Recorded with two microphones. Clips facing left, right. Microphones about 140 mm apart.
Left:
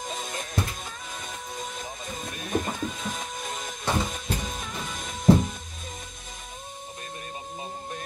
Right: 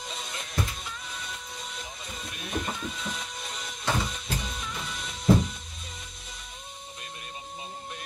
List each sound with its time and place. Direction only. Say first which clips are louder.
0.0 s music: left 5 dB; 45° left (ahead or behind)